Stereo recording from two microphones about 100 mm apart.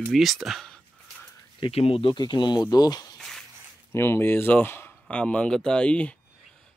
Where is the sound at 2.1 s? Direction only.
45° left (ahead or behind).